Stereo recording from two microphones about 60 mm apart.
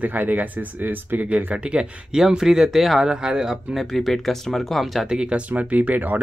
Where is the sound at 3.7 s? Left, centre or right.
Centre.